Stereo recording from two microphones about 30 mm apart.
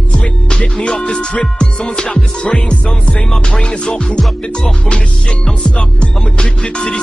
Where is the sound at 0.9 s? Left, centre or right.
Left.